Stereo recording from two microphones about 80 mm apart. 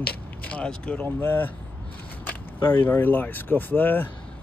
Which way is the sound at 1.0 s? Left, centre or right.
Left.